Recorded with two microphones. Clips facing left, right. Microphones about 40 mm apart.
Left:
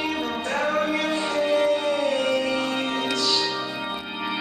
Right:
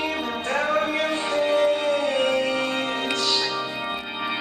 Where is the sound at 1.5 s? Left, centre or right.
Right.